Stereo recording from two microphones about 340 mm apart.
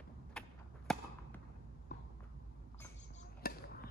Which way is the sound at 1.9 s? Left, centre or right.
Left.